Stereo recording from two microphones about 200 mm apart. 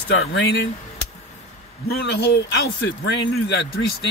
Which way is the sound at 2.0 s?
60° left (ahead or behind).